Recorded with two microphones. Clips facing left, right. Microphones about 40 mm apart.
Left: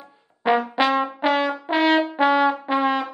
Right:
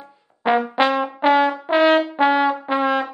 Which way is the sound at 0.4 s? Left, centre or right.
Centre.